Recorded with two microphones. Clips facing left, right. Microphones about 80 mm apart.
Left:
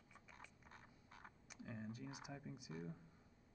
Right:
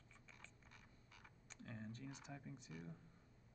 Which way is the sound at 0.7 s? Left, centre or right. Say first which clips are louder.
Left 4 dB; left.